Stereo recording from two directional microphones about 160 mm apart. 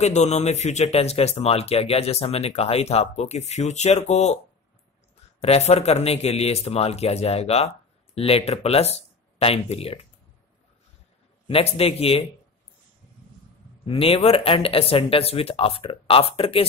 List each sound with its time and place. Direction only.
0.0 s a man's voice: 45° left (ahead or behind)
5.4 s a man's voice: 40° left (ahead or behind)
11.4 s a man's voice: 35° left (ahead or behind)
13.8 s a man's voice: 35° left (ahead or behind)